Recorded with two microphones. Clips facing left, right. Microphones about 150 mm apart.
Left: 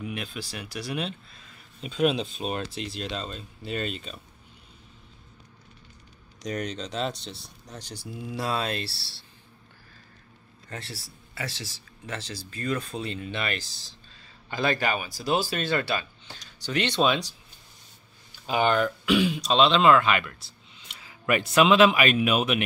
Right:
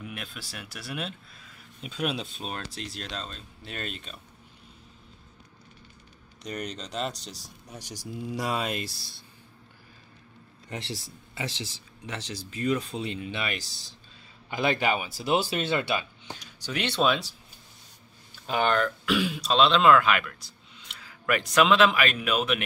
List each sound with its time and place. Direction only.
0.0 s speech: centre (ahead or behind)
6.9 s speech: centre (ahead or behind)
10.7 s speech: 20° right (ahead or behind); by 17.3 s 5° right (ahead or behind)
18.5 s a man's voice: 5° left (ahead or behind)